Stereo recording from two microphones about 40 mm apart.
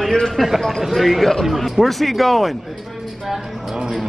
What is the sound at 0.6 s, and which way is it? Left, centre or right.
A man's voice, centre.